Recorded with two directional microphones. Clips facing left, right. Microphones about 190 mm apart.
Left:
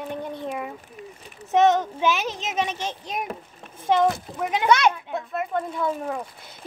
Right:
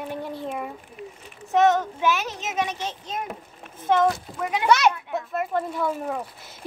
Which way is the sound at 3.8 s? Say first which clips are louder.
Even; 15° left (ahead or behind).